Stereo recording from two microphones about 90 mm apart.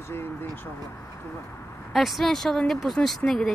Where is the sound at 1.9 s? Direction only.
Centre (ahead or behind).